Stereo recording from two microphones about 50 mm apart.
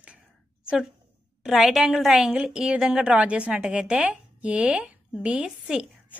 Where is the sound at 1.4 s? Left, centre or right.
Centre.